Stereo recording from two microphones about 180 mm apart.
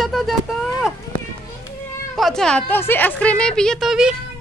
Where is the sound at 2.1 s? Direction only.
Centre (ahead or behind).